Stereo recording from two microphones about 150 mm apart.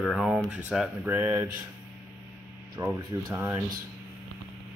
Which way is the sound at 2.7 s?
20° right (ahead or behind).